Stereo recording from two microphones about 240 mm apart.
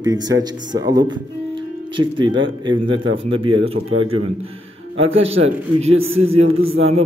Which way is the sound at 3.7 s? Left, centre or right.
Right.